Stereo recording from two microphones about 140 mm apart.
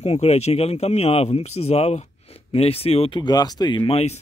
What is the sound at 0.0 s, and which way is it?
Speech, 50° left (ahead or behind).